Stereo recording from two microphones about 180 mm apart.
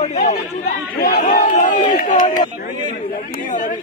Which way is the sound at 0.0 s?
40° left (ahead or behind).